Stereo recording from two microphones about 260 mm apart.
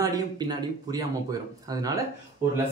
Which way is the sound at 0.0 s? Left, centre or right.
Centre.